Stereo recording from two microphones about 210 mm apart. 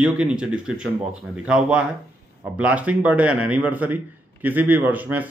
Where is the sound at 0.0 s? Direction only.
5° right (ahead or behind).